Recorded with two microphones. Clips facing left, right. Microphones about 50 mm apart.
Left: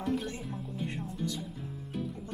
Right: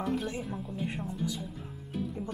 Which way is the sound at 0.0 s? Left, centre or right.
Centre.